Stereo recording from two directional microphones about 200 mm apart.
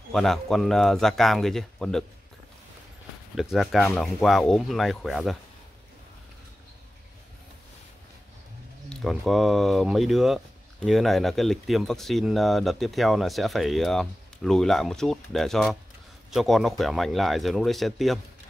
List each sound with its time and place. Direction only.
0.1 s speech: centre (ahead or behind)
3.3 s speech: centre (ahead or behind)
8.8 s speech: centre (ahead or behind)